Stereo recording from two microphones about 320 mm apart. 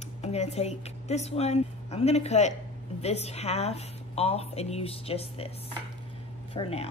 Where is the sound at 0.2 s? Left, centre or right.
Centre.